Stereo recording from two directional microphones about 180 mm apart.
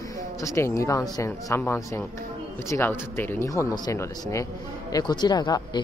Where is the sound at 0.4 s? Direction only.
15° left (ahead or behind).